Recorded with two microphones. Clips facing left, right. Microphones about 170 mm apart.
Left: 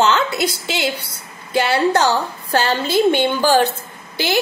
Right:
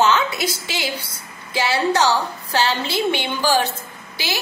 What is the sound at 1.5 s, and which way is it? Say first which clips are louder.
A woman's voice: left 3 dB; 55° left (ahead or behind).